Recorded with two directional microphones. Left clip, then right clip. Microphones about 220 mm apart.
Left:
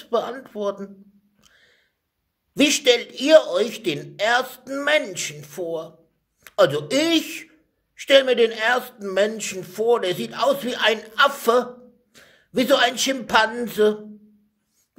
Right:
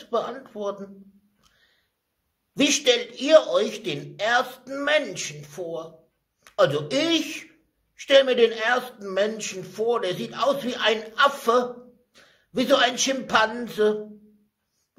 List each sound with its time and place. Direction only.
0.0 s a man's voice: 40° left (ahead or behind)
1.4 s a sound: 40° left (ahead or behind)
2.5 s a man's voice: 40° left (ahead or behind)